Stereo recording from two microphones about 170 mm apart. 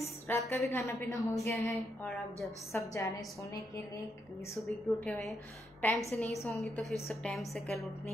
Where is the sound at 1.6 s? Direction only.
Centre (ahead or behind).